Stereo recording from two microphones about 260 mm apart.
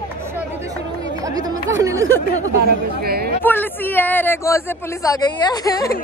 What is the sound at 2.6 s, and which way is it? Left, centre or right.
Speech, right.